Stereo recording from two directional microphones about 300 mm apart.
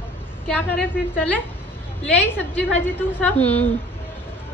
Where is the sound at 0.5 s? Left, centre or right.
Centre.